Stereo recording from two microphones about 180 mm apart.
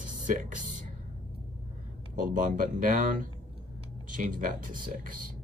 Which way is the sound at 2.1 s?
45° right (ahead or behind).